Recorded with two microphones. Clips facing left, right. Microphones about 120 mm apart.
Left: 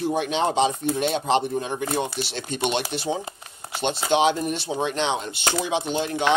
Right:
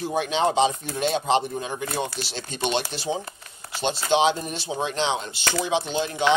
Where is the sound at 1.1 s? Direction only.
55° left (ahead or behind).